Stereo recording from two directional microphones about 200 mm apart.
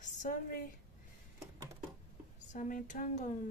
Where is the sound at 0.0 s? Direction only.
40° left (ahead or behind).